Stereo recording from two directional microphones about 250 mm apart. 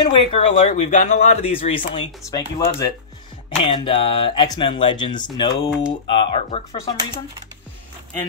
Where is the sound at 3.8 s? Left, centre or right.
Left.